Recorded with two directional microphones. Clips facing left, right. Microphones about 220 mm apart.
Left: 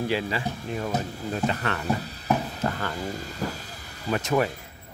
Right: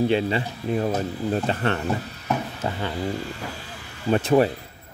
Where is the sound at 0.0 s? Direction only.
25° right (ahead or behind).